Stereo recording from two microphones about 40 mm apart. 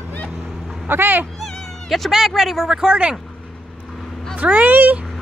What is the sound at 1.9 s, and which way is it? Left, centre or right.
Speech, centre.